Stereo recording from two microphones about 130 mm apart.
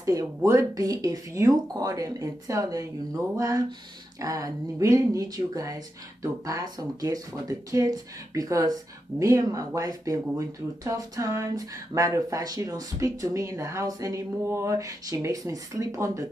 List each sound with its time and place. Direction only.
0.0 s speech: 25° right (ahead or behind)